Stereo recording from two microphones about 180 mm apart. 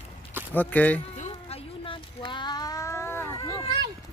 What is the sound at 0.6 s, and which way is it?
Speech, 10° left (ahead or behind).